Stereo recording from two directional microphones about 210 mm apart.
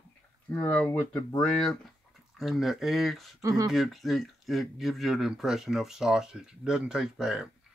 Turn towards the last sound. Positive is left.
turn(degrees=0)  # may be behind; listen again after turning